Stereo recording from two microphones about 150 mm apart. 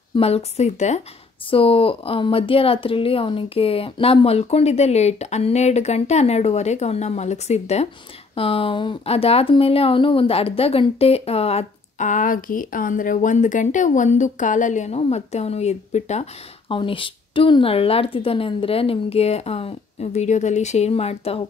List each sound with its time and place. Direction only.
0.1 s speech: 40° left (ahead or behind)
1.5 s speech: 40° left (ahead or behind)